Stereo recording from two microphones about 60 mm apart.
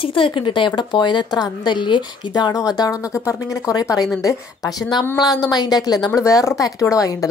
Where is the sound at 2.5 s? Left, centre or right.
Left.